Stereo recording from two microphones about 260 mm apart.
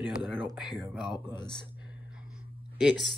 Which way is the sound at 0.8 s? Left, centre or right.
Centre.